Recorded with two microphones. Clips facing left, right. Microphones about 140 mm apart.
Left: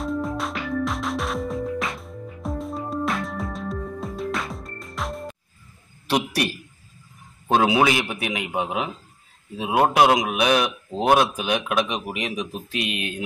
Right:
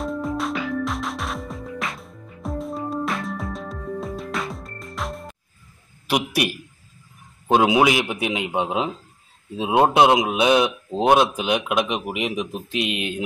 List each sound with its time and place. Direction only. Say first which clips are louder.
0.0 s music: right 1 dB; centre (ahead or behind)
6.0 s a man's voice: right 1 dB; 10° right (ahead or behind)